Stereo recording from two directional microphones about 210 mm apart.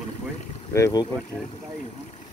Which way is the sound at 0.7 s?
15° left (ahead or behind).